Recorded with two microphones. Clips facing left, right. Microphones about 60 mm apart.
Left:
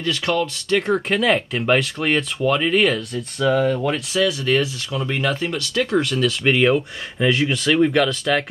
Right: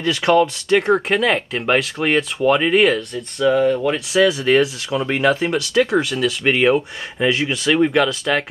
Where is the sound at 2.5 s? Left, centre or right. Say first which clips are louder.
Right 3 dB; centre.